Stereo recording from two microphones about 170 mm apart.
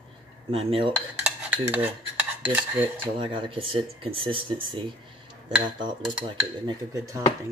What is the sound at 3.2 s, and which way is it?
Speech, 30° right (ahead or behind).